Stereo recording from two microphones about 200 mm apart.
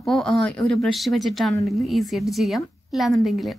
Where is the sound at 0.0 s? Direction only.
Centre (ahead or behind).